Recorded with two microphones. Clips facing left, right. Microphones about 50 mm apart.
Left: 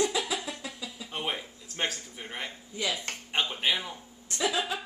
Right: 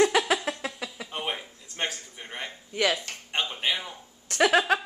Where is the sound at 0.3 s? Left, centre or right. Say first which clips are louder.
Right 7 dB; right.